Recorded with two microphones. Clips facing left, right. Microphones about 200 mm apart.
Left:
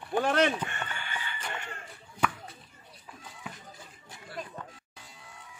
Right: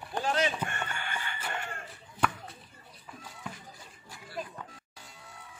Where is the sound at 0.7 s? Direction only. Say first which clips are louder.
Right 2 dB; 50° right (ahead or behind).